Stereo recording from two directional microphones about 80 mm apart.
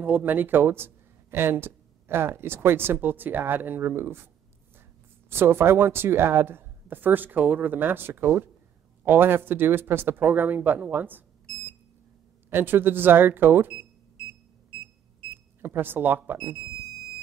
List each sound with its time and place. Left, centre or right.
0.0 s speech: right
5.3 s speech: right
12.4 s speech: right
15.6 s speech: right